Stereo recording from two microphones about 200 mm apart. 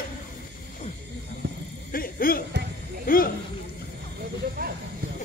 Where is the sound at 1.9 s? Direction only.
45° left (ahead or behind).